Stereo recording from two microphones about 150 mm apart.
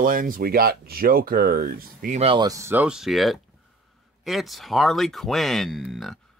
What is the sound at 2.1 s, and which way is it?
Speech, 40° right (ahead or behind).